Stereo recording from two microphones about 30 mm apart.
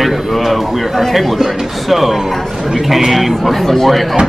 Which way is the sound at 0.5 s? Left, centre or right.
Centre.